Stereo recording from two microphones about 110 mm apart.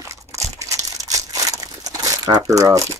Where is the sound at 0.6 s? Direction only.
30° right (ahead or behind).